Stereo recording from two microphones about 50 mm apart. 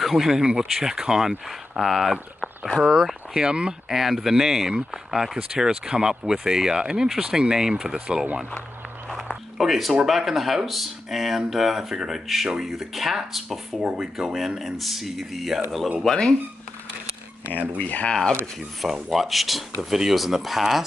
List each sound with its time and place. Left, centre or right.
0.0 s speech: centre
3.3 s speech: centre
3.9 s speech: centre
9.1 s a sound: centre
10.0 s speech: centre
13.7 s speech: centre
14.1 s speech: centre
16.0 s speech: centre
17.5 s speech: left
19.0 s speech: centre